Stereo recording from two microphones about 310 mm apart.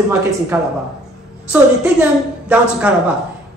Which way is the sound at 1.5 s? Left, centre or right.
Centre.